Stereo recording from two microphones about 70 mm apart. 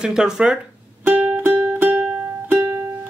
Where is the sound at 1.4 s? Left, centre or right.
Right.